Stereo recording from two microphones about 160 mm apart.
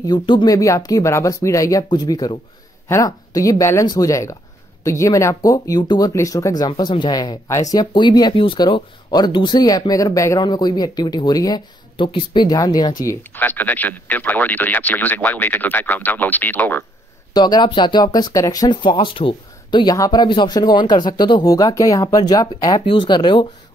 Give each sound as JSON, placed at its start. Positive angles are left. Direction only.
{"t": 0.0, "sound": "speech", "side_deg": 30}
{"t": 17.3, "sound": "speech", "side_deg": 25}